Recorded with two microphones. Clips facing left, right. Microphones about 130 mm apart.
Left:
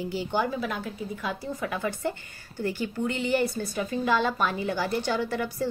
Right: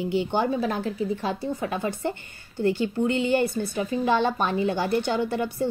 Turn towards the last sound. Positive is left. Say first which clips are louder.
# right 3 dB
turn(degrees=-25)  # may be behind; listen again after turning